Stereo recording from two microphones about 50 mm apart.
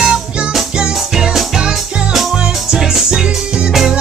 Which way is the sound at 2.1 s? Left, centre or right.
Centre.